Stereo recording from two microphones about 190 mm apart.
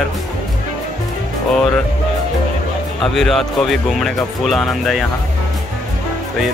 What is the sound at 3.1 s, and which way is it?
Speech, centre (ahead or behind).